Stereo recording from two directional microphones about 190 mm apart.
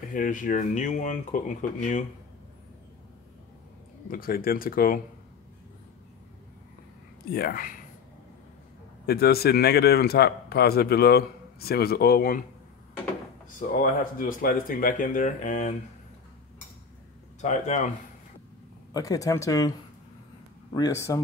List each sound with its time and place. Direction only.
0.1 s speech: 45° left (ahead or behind)
4.1 s speech: 50° left (ahead or behind)
7.3 s speech: 50° left (ahead or behind)
9.0 s a man's voice: 55° left (ahead or behind)
13.6 s speech: 45° left (ahead or behind)
17.4 s speech: 40° left (ahead or behind)
18.9 s speech: 20° left (ahead or behind)
20.7 s speech: 20° left (ahead or behind)